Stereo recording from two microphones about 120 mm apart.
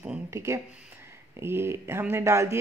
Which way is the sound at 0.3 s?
25° right (ahead or behind).